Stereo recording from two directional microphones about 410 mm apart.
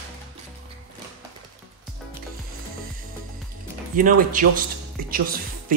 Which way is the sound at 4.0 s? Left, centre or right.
Centre.